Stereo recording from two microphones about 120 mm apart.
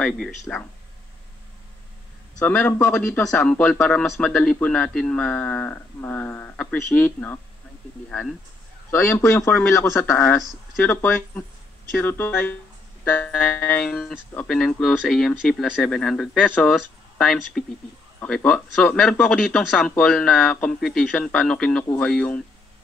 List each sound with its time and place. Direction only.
0.5 s a man's voice: 5° left (ahead or behind)
2.4 s a man's voice: 15° left (ahead or behind)
8.9 s a man's voice: 20° left (ahead or behind)